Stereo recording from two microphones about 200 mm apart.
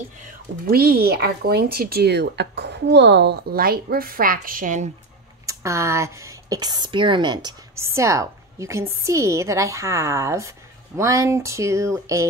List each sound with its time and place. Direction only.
0.7 s speech: 50° right (ahead or behind)
5.5 s a woman's voice: 15° right (ahead or behind)